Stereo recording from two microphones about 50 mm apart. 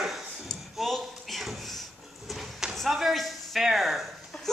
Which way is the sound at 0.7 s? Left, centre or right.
Centre.